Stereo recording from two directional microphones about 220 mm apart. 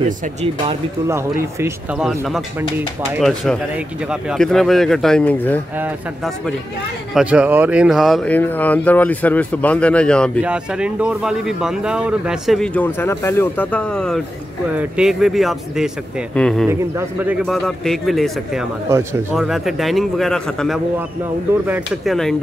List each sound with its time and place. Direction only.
0.2 s speech: 30° right (ahead or behind)
1.0 s speech: 10° right (ahead or behind); by 5.6 s 5° left (ahead or behind)
5.8 s speech: 5° right (ahead or behind)
16.6 s speech: 10° right (ahead or behind)